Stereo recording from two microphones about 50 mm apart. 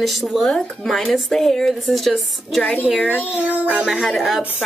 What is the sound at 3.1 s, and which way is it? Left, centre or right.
Child singing, right.